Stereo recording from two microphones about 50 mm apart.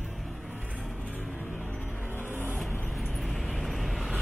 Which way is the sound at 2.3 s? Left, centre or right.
Right.